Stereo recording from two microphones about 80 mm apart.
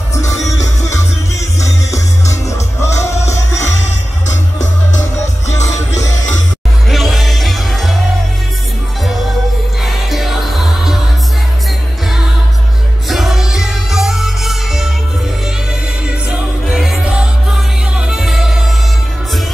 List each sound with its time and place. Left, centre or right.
0.1 s music: left
6.9 s music: centre
10.0 s music: centre
13.1 s music: centre
16.3 s music: centre